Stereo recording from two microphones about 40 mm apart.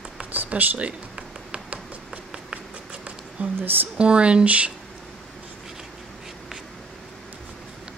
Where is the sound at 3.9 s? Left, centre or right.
Right.